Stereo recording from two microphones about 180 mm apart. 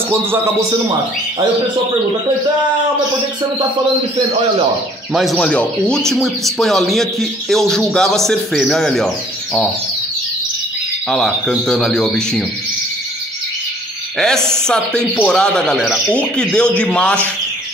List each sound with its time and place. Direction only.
0.1 s speech: 15° right (ahead or behind)
5.1 s speech: centre (ahead or behind)
11.1 s speech: 5° left (ahead or behind)
14.7 s speech: 5° left (ahead or behind)